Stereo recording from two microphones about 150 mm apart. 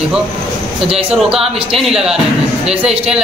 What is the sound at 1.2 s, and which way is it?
A man's voice, 5° right (ahead or behind).